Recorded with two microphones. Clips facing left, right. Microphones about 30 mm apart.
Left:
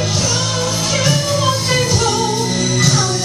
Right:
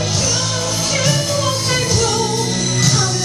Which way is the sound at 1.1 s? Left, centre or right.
Centre.